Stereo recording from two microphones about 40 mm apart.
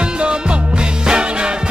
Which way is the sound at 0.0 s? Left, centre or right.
Right.